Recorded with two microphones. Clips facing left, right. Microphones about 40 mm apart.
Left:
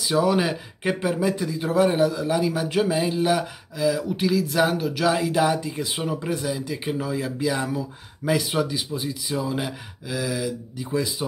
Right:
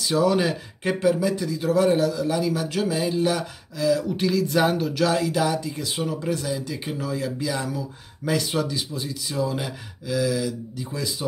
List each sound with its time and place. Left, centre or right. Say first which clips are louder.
0.0 s speech: even; centre